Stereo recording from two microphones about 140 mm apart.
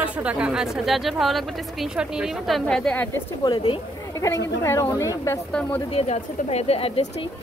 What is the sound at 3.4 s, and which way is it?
Speech, 30° left (ahead or behind).